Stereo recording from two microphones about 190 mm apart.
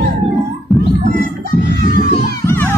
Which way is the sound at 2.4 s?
10° left (ahead or behind).